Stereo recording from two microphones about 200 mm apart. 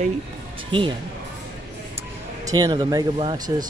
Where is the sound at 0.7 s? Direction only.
25° right (ahead or behind).